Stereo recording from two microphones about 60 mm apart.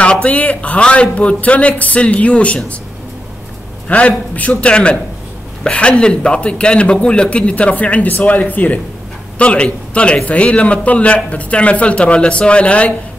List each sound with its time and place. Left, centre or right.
0.0 s a man's voice: centre
3.8 s a man's voice: left